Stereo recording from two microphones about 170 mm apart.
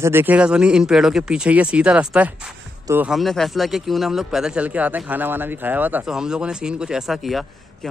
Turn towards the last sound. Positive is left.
turn(degrees=0)  # may be behind; listen again after turning